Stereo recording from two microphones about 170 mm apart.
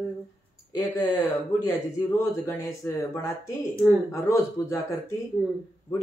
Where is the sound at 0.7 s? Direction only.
20° left (ahead or behind).